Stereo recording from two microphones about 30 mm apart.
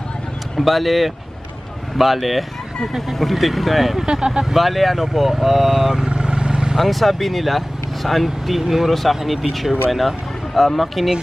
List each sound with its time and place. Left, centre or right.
0.6 s speech: centre
4.0 s speech: right
4.6 s speech: centre
6.0 s vehicle: right
6.8 s speech: centre